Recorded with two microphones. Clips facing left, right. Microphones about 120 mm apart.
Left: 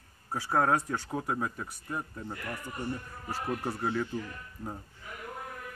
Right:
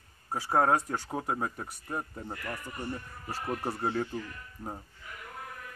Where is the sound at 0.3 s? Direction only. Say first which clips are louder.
Right 1 dB; 20° right (ahead or behind).